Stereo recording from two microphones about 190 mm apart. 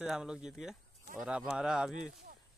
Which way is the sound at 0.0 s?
5° right (ahead or behind).